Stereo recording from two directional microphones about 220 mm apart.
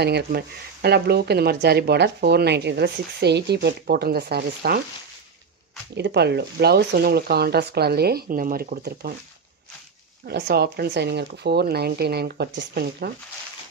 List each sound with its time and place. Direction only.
0.0 s speech: 45° right (ahead or behind)
5.9 s speech: 50° right (ahead or behind)
10.2 s speech: 45° right (ahead or behind)